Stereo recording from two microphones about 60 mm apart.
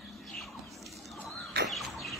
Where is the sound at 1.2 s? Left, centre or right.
Centre.